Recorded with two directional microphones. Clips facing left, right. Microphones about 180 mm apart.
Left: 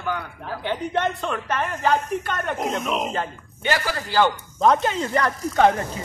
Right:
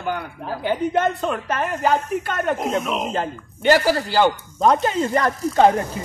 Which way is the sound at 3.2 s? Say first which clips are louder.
Right 3 dB; 40° right (ahead or behind).